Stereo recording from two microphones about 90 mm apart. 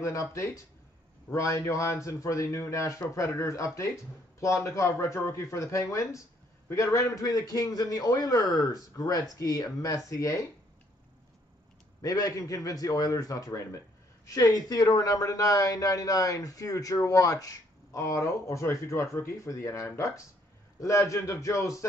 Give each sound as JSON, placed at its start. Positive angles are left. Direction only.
{"t": 0.0, "sound": "a man's voice", "side_deg": 35}
{"t": 12.0, "sound": "a man's voice", "side_deg": 40}